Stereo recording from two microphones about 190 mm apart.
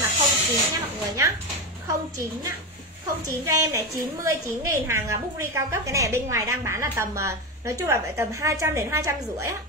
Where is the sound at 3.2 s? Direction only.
20° right (ahead or behind).